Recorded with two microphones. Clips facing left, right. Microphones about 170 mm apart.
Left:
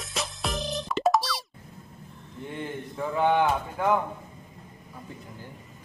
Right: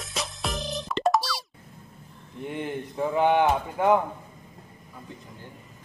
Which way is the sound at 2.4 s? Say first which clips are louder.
Right 3 dB; 20° right (ahead or behind).